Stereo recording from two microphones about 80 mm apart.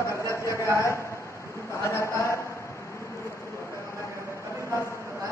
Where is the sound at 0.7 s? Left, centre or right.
Left.